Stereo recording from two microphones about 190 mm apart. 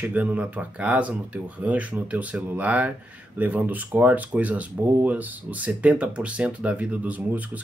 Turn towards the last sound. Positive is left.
turn(degrees=-10)  # may be behind; listen again after turning